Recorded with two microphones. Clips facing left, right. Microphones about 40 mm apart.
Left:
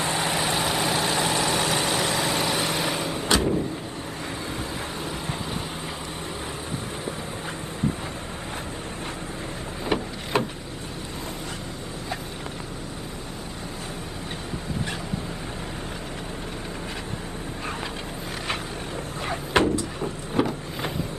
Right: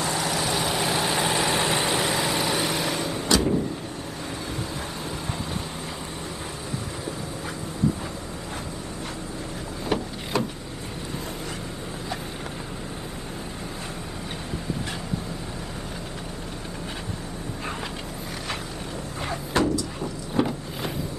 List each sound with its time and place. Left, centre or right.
0.0 s vehicle: left
0.7 s vehicle: centre
1.1 s vehicle: centre
2.0 s vehicle: centre
3.3 s vehicle: left
9.9 s a sound: left
10.3 s vehicle: left
19.5 s a sound: left
20.4 s vehicle: left